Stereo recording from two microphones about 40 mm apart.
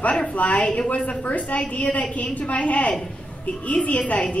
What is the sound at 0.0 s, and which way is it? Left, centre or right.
A woman's voice, left.